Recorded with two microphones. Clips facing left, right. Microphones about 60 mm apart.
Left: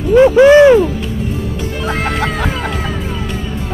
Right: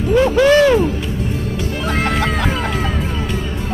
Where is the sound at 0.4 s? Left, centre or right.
Centre.